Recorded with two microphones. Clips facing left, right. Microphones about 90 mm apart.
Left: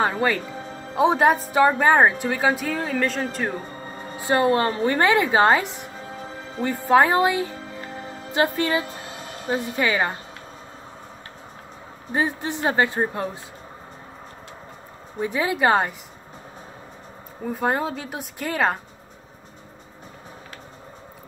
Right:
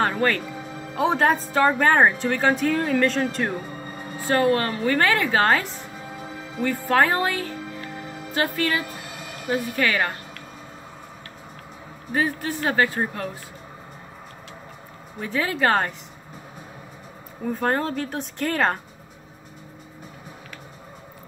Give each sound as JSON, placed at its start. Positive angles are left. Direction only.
{"t": 0.1, "sound": "speech", "side_deg": 5}
{"t": 0.9, "sound": "a woman's voice", "side_deg": 15}
{"t": 4.2, "sound": "speech", "side_deg": 20}
{"t": 5.9, "sound": "music", "side_deg": 0}
{"t": 6.6, "sound": "a woman's voice", "side_deg": 20}
{"t": 7.9, "sound": "music", "side_deg": 0}
{"t": 8.3, "sound": "speech", "side_deg": 20}
{"t": 12.1, "sound": "speech", "side_deg": 25}
{"t": 15.1, "sound": "a woman's voice", "side_deg": 15}
{"t": 17.5, "sound": "a woman's voice", "side_deg": 10}